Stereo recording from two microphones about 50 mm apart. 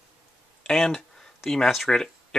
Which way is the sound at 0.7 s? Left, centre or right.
Centre.